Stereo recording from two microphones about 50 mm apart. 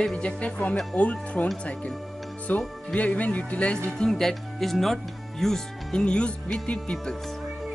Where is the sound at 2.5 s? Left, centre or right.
Left.